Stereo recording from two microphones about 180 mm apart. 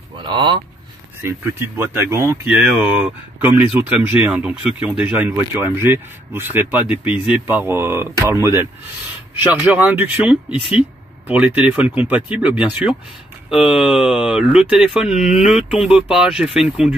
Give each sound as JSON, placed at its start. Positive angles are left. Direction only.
{"t": 0.2, "sound": "speech", "side_deg": -25}
{"t": 1.2, "sound": "speech", "side_deg": -15}